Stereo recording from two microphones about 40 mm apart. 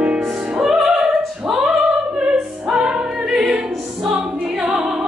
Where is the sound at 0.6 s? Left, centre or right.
Centre.